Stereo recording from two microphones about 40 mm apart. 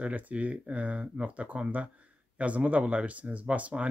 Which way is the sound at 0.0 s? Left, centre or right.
Right.